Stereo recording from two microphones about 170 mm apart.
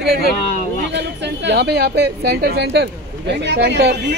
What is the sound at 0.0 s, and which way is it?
Speech, 70° right (ahead or behind).